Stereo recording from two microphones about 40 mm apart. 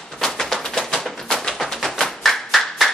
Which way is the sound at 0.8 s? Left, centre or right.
Centre.